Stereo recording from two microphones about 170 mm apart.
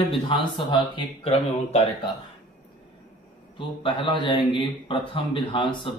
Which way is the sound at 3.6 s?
30° left (ahead or behind).